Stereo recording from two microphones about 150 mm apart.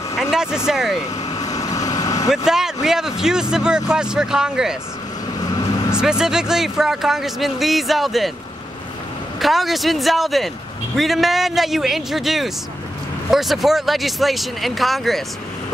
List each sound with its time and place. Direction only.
0.2 s vehicle: 5° right (ahead or behind)
0.7 s speech: centre (ahead or behind)
1.3 s vehicle: 25° left (ahead or behind)
2.3 s speech: 5° right (ahead or behind)
5.9 s speech: 5° right (ahead or behind)
9.4 s speech: centre (ahead or behind)